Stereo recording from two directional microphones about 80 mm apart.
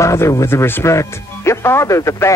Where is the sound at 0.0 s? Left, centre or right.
Left.